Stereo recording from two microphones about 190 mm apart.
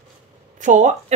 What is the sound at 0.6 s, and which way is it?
Speech, 40° right (ahead or behind).